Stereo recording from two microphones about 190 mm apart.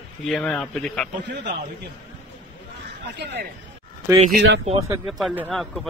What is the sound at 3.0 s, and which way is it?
Speech, 65° right (ahead or behind).